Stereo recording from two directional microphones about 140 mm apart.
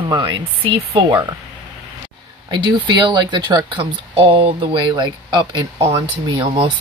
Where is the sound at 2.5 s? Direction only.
35° right (ahead or behind).